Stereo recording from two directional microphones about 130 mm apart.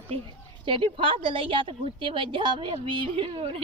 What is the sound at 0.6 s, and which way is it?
A woman's voice, 40° right (ahead or behind).